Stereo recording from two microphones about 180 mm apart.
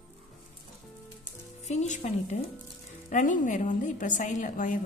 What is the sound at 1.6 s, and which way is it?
A woman's voice, 40° left (ahead or behind).